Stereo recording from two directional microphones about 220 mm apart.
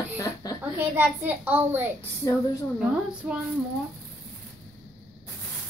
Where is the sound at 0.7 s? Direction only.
10° right (ahead or behind).